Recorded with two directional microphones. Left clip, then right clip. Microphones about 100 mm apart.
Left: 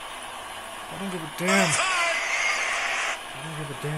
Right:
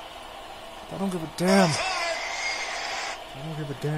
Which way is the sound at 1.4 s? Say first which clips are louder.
Even; 50° right (ahead or behind).